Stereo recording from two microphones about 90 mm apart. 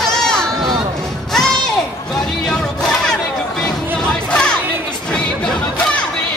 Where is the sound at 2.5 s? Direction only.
5° left (ahead or behind).